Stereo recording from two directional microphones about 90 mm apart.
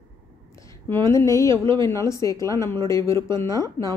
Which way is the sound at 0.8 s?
30° left (ahead or behind).